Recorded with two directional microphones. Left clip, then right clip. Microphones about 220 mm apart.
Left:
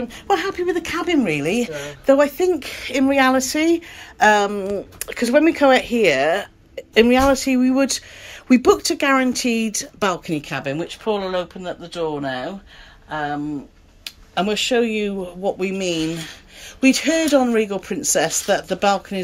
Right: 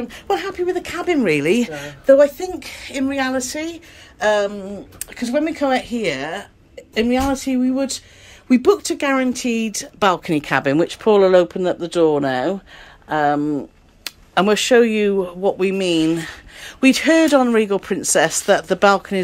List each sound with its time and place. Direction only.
0.1 s a woman's voice: 5° left (ahead or behind)
1.8 s speech: 5° left (ahead or behind); by 19.2 s 10° right (ahead or behind)